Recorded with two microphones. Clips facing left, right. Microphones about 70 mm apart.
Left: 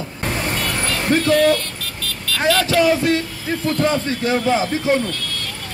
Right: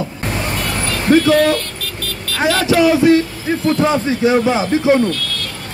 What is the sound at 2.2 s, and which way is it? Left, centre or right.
Vehicle, right.